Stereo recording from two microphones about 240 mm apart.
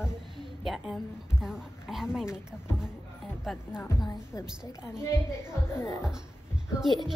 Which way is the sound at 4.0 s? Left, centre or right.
Centre.